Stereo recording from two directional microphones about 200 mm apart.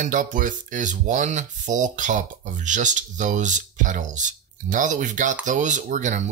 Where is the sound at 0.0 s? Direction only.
40° right (ahead or behind).